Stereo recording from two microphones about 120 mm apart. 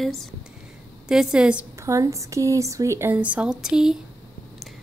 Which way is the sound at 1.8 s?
25° right (ahead or behind).